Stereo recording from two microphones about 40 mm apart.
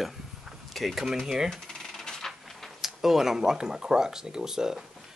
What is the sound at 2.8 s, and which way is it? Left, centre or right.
Speech, centre.